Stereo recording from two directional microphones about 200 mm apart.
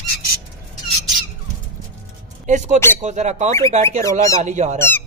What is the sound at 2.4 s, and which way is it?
Speech, 35° right (ahead or behind).